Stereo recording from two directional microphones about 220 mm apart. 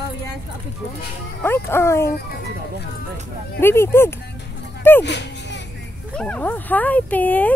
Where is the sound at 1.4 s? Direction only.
10° left (ahead or behind).